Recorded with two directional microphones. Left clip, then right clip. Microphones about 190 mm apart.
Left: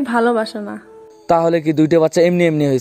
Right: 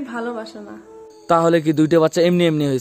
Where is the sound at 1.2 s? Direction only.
20° left (ahead or behind).